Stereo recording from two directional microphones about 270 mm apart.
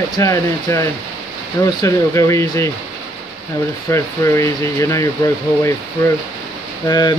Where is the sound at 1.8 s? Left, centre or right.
Centre.